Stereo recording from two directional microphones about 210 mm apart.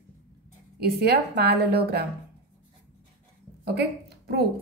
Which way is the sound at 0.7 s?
50° right (ahead or behind).